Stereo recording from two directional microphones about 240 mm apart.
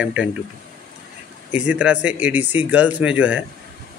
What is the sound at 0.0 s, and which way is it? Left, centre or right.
Speech, centre.